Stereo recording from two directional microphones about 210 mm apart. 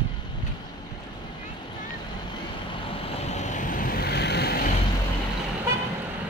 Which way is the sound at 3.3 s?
35° left (ahead or behind).